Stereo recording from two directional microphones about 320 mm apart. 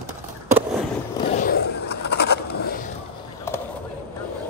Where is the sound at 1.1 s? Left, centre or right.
Left.